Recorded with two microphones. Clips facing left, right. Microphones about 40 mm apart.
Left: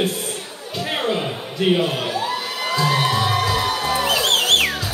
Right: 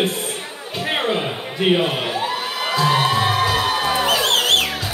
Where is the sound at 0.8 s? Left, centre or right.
Right.